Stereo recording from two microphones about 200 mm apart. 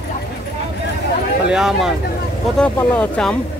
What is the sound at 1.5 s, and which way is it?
Speech, centre (ahead or behind).